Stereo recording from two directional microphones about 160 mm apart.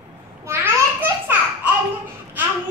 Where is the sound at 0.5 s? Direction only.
15° right (ahead or behind).